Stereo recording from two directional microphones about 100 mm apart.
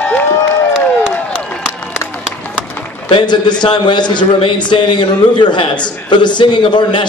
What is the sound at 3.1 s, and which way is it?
A man's voice, 50° left (ahead or behind).